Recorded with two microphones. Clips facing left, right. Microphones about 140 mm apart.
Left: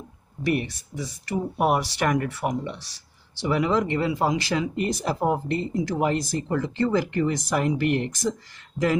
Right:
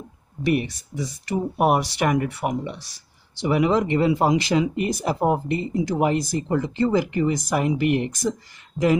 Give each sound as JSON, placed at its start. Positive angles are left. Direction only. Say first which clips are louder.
{"t": 0.4, "sound": "speech", "louder": "right 3 dB", "side_deg": -15}